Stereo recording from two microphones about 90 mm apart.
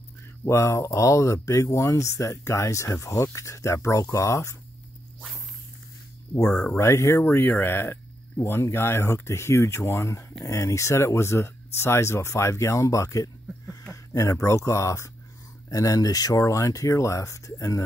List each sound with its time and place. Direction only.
0.5 s speech: 35° left (ahead or behind)
6.5 s speech: 10° left (ahead or behind)
6.8 s speech: 30° left (ahead or behind)
7.2 s speech: 20° left (ahead or behind)